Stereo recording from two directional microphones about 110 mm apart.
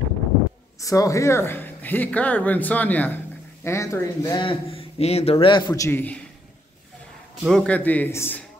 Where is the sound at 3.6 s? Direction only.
25° left (ahead or behind).